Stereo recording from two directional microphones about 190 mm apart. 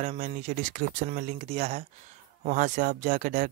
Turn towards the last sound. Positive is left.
turn(degrees=-45)  # may be behind; listen again after turning